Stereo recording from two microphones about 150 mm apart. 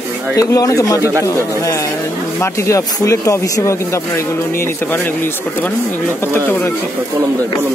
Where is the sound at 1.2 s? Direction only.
20° left (ahead or behind).